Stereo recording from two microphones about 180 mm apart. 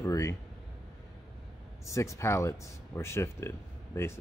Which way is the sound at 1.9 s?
15° left (ahead or behind).